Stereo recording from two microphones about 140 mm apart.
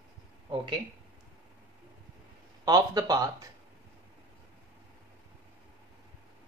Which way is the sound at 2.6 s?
25° right (ahead or behind).